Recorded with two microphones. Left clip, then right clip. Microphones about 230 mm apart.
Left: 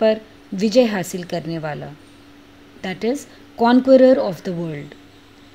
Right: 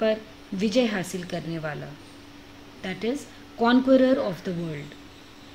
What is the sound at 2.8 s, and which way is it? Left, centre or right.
A woman's voice, left.